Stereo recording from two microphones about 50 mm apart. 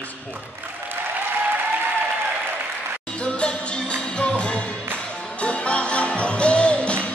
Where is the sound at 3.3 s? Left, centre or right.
Centre.